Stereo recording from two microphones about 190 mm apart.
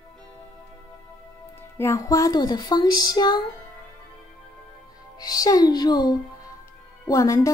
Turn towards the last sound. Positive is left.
turn(degrees=15)  # may be behind; listen again after turning